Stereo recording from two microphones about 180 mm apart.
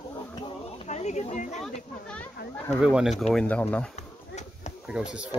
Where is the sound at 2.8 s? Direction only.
5° right (ahead or behind).